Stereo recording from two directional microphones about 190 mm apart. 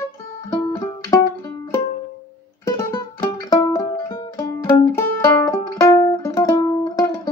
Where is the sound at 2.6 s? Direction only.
15° left (ahead or behind).